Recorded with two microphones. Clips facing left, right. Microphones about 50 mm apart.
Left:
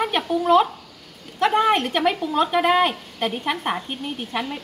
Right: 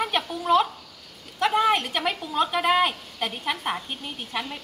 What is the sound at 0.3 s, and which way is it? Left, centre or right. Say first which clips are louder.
A woman's voice: left 6 dB; centre.